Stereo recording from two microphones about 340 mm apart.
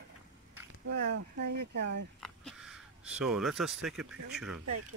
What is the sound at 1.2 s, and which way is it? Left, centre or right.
Speech, right.